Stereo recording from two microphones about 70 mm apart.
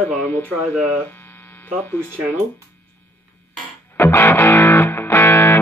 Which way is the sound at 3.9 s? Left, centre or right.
Left.